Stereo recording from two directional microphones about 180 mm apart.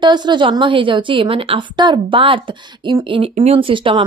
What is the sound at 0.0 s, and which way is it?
A woman's voice, 25° right (ahead or behind).